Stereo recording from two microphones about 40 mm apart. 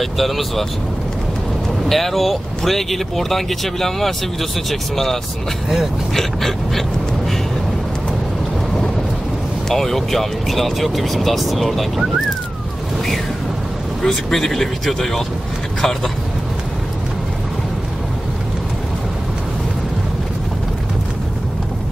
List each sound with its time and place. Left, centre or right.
0.0 s speech: centre
1.9 s speech: centre
9.7 s speech: centre
14.0 s speech: centre